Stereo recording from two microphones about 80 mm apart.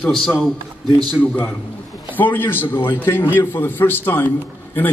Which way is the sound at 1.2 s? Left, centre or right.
Centre.